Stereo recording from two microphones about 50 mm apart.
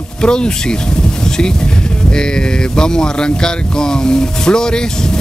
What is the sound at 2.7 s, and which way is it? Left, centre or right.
Speech, centre.